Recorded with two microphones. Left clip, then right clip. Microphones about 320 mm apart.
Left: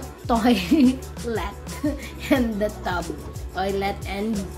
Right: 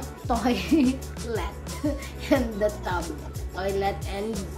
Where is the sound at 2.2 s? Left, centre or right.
Centre.